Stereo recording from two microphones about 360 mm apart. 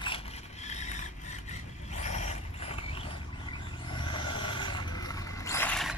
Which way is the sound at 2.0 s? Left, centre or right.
Centre.